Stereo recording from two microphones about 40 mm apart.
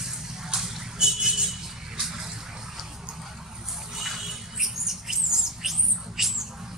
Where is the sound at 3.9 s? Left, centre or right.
Centre.